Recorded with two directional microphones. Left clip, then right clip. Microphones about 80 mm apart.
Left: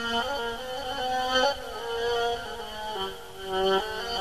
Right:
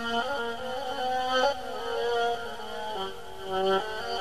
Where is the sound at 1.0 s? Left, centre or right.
Right.